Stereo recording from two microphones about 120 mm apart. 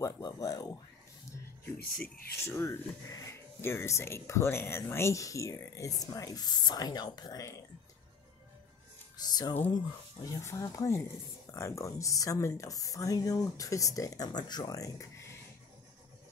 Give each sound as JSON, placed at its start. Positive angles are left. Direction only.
{"t": 0.0, "sound": "speech", "side_deg": 30}
{"t": 2.3, "sound": "speech", "side_deg": 20}
{"t": 9.1, "sound": "speech", "side_deg": 35}